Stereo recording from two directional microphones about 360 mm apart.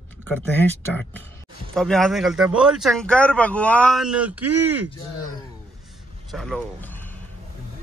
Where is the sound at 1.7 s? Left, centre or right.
Centre.